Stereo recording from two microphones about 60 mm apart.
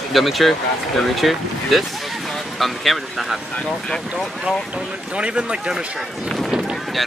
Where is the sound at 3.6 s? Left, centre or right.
Centre.